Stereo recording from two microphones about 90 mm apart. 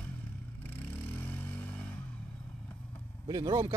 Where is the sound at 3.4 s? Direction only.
50° right (ahead or behind).